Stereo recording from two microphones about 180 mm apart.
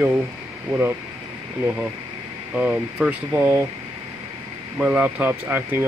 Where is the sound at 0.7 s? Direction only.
10° right (ahead or behind).